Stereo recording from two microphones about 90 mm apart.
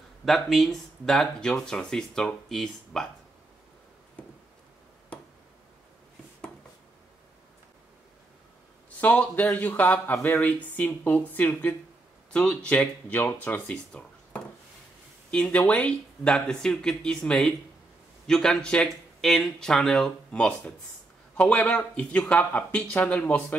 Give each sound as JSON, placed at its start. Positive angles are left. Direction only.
{"t": 0.2, "sound": "speech", "side_deg": 0}
{"t": 9.0, "sound": "speech", "side_deg": 15}
{"t": 15.4, "sound": "speech", "side_deg": 15}